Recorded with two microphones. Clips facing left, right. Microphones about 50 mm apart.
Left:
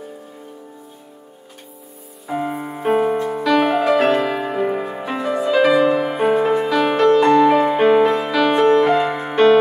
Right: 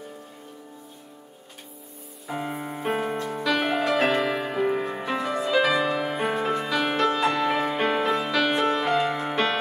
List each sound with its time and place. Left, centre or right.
2.2 s music: centre